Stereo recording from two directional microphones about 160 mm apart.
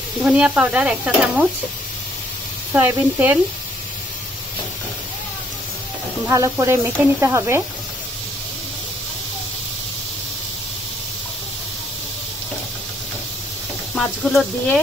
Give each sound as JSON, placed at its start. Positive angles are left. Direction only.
{"t": 0.2, "sound": "speech", "side_deg": -5}
{"t": 2.7, "sound": "speech", "side_deg": -10}
{"t": 6.2, "sound": "speech", "side_deg": -20}
{"t": 13.9, "sound": "speech", "side_deg": 0}